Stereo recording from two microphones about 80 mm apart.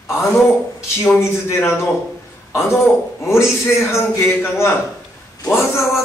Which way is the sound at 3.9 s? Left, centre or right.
Left.